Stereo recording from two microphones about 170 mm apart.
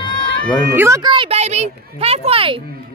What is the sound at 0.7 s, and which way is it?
Speech, 15° right (ahead or behind).